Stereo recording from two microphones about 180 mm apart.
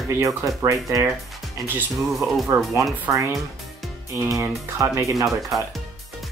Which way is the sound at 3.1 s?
15° right (ahead or behind).